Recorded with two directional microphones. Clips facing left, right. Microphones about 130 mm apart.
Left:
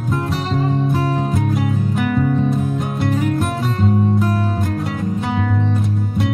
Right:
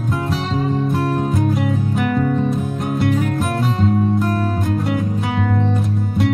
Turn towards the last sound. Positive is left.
turn(degrees=0)  # may be behind; listen again after turning